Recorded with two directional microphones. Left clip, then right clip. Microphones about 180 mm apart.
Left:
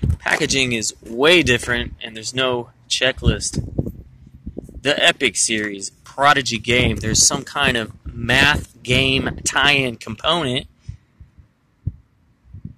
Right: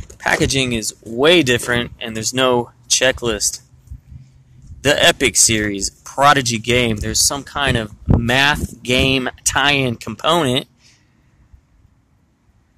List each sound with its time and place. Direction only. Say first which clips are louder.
0.2 s speech: right 2 dB; 10° right (ahead or behind)
1.8 s speech: right 4 dB; 15° right (ahead or behind)
4.8 s speech: right 3 dB; 20° right (ahead or behind)